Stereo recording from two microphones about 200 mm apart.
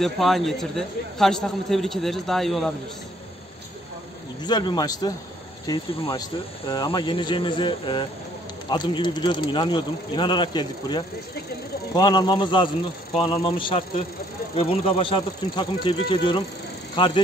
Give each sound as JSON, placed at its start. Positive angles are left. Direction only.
{"t": 0.0, "sound": "a man's voice", "side_deg": 0}
{"t": 4.4, "sound": "speech", "side_deg": 20}